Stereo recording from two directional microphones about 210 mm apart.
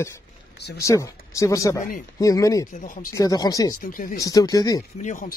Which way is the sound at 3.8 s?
40° left (ahead or behind).